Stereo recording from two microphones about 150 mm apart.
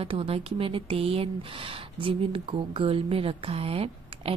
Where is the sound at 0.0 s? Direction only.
40° right (ahead or behind).